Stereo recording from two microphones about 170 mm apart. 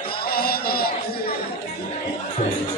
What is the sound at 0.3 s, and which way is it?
Music, 60° left (ahead or behind).